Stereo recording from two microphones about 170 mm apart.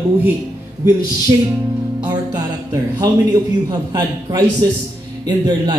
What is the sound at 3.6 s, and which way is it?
Speech, 25° right (ahead or behind).